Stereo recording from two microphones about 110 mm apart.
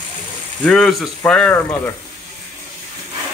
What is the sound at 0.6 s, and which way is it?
Speech, 5° left (ahead or behind).